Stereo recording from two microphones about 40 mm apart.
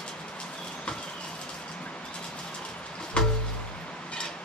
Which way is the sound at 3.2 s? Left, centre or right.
Left.